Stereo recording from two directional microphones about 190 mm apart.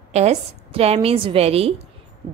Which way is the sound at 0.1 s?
35° right (ahead or behind).